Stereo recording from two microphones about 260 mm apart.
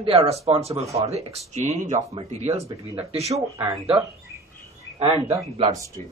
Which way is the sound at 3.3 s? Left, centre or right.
Centre.